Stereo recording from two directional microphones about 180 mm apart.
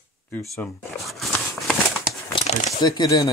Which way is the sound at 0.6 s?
Centre (ahead or behind).